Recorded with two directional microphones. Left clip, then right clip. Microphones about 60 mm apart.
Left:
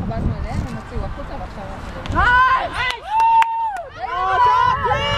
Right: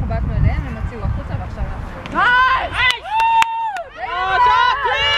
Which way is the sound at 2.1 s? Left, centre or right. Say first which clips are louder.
Right 1 dB; right.